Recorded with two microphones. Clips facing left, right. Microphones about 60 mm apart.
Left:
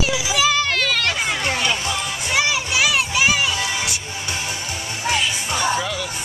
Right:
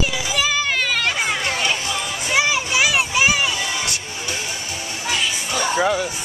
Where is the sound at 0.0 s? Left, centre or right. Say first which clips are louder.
Left 2 dB; centre.